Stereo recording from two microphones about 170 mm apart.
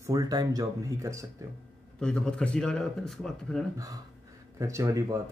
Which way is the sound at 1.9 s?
5° left (ahead or behind).